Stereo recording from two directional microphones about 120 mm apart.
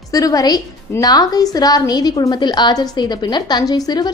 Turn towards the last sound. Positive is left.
turn(degrees=35)  # may be behind; listen again after turning